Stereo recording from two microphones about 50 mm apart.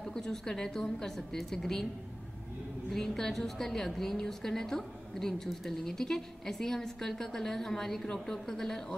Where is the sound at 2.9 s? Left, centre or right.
Centre.